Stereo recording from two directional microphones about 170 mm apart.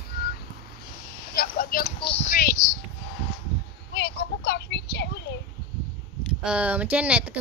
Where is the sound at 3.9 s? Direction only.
80° left.